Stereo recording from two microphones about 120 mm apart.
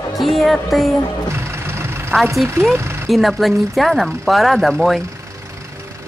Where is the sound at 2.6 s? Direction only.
20° right (ahead or behind).